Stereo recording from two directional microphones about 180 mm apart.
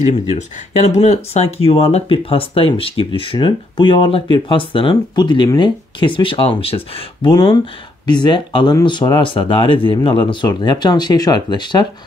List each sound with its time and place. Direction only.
0.9 s speech: 40° left (ahead or behind)